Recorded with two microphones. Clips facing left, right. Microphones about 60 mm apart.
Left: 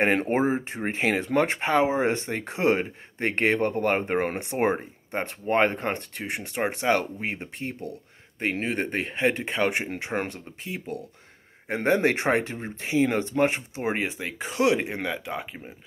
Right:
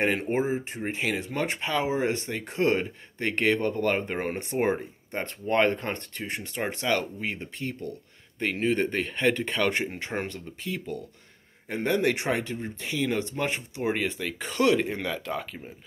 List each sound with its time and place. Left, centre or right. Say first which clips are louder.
0.0 s speech: left 3 dB; left
11.6 s speech: left 3 dB; left
14.4 s speech: even; centre